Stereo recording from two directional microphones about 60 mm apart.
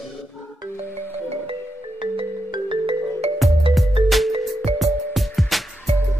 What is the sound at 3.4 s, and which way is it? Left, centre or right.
Music, centre.